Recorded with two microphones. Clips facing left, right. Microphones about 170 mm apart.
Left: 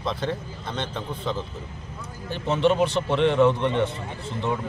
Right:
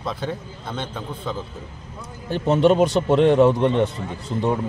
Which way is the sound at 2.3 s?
45° right (ahead or behind).